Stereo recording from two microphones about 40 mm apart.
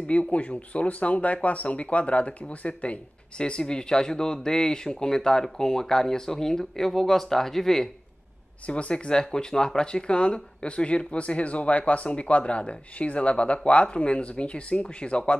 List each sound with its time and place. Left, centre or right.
0.0 s speech: left; by 7.9 s centre
8.6 s speech: left